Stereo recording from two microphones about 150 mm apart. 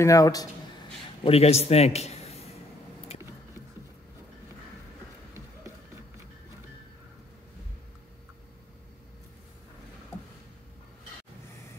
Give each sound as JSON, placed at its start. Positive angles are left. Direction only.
{"t": 0.0, "sound": "a man's voice", "side_deg": 20}
{"t": 1.2, "sound": "a man's voice", "side_deg": 45}